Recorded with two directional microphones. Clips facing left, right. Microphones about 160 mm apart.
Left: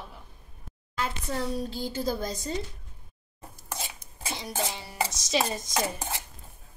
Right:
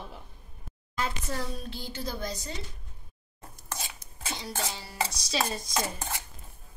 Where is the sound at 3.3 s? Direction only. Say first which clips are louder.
Left 2 dB; 20° left (ahead or behind).